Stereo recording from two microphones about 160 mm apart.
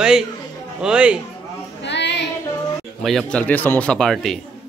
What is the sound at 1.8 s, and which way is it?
Child singing, 90° left.